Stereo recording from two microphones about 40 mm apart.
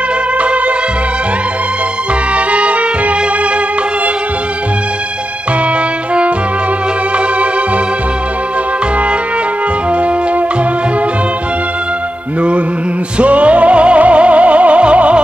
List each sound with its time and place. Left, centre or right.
0.4 s music: right
2.3 s music: right
9.9 s music: right
12.4 s music: right